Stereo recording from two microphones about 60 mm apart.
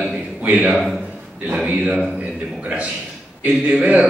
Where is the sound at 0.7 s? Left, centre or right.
Centre.